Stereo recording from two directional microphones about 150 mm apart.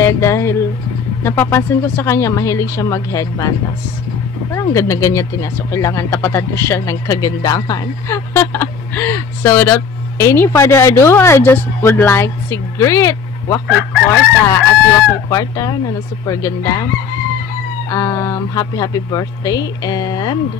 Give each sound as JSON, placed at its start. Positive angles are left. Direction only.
{"t": 0.0, "sound": "speech", "side_deg": 20}
{"t": 4.6, "sound": "speech", "side_deg": 20}
{"t": 14.0, "sound": "fowl", "side_deg": 20}
{"t": 15.2, "sound": "speech", "side_deg": 25}
{"t": 17.8, "sound": "speech", "side_deg": 20}